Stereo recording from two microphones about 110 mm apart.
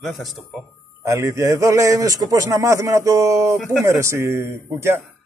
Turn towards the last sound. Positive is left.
turn(degrees=-25)  # may be behind; listen again after turning